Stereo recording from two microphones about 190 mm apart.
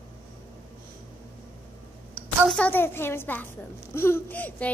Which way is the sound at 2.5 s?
10° left (ahead or behind).